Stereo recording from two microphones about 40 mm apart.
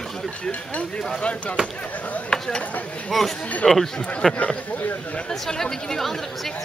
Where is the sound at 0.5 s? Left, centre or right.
Left.